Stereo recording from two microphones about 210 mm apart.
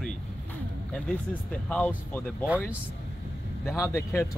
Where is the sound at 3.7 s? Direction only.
10° left (ahead or behind).